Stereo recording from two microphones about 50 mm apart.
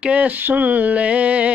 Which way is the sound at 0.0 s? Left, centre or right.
Right.